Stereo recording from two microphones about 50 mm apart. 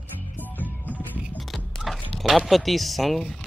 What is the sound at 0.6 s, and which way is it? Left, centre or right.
Music, left.